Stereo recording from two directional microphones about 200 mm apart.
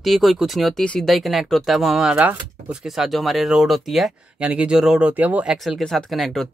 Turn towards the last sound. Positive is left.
turn(degrees=0)  # may be behind; listen again after turning